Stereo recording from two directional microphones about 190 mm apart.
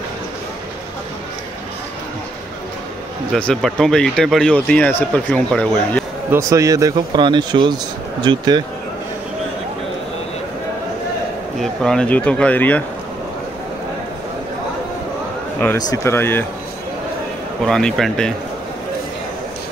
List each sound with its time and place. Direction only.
3.3 s speech: 5° left (ahead or behind)
6.3 s speech: 15° right (ahead or behind)
11.6 s speech: 5° left (ahead or behind)
15.6 s speech: 10° left (ahead or behind)
17.6 s speech: 5° left (ahead or behind)